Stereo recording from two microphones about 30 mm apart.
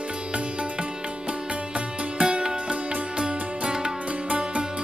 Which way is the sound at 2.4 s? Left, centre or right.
Right.